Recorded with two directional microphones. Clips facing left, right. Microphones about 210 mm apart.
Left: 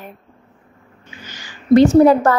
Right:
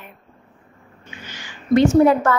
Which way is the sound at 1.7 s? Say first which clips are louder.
Left 4 dB; 35° left (ahead or behind).